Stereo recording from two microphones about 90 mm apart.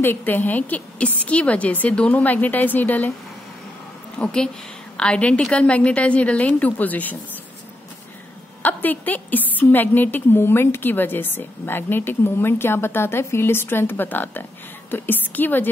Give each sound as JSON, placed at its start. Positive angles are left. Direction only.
{"t": 0.0, "sound": "a woman's voice", "side_deg": 25}
{"t": 4.2, "sound": "a woman's voice", "side_deg": 10}
{"t": 8.6, "sound": "a woman's voice", "side_deg": 20}